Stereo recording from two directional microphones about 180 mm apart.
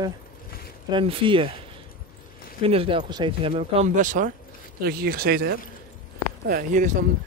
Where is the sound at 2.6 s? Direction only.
30° right (ahead or behind); by 4.3 s 45° right (ahead or behind).